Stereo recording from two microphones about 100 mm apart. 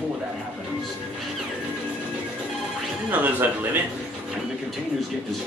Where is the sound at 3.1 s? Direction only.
15° right (ahead or behind).